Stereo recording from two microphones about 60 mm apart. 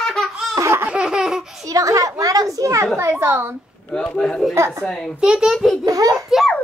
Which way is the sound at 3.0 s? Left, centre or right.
Right.